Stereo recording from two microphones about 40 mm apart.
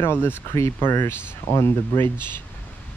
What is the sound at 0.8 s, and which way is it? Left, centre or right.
Speech, left.